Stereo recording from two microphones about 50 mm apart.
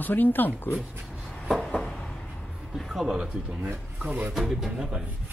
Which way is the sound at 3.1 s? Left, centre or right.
Right.